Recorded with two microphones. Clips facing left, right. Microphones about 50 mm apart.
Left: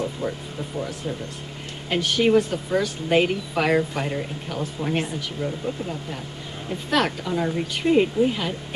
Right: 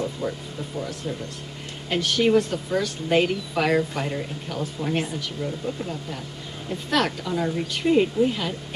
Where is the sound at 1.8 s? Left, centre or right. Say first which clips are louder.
Left 1 dB; centre.